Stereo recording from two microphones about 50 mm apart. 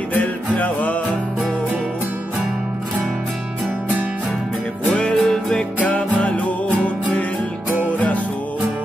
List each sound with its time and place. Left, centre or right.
0.1 s music: left
5.1 s music: centre
5.8 s music: left